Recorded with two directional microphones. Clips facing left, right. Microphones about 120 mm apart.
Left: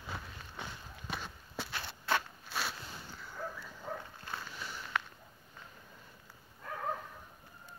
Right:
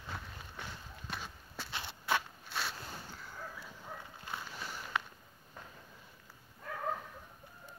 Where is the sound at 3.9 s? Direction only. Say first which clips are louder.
Left 7 dB; 90° left.